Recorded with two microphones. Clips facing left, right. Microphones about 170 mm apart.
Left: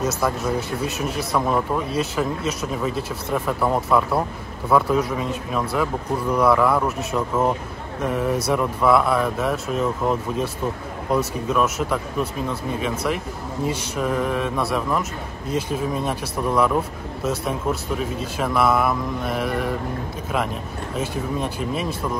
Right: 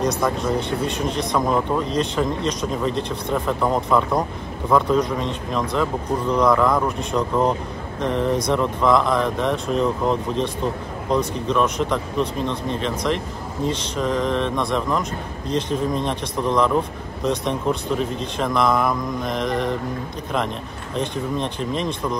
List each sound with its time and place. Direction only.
0.0 s speech: 5° left (ahead or behind)
20.9 s speech: 5° left (ahead or behind)